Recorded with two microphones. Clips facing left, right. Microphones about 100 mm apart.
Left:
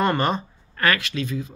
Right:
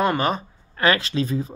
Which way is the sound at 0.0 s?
5° right (ahead or behind).